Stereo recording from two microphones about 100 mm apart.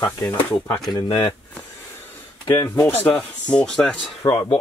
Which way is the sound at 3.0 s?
15° left (ahead or behind).